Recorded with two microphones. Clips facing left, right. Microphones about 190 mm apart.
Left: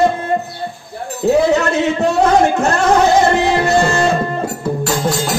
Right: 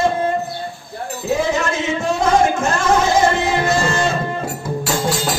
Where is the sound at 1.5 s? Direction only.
65° left (ahead or behind).